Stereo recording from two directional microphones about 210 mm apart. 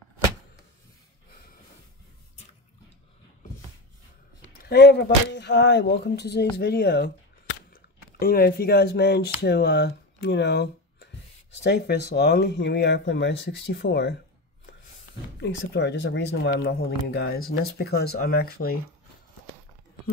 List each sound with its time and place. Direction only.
4.6 s speech: 50° left (ahead or behind)
15.4 s speech: 55° left (ahead or behind)